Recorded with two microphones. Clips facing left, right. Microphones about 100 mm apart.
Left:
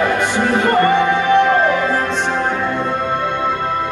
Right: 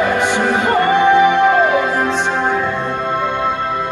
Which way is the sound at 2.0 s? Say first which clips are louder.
Right 2 dB; 5° right (ahead or behind).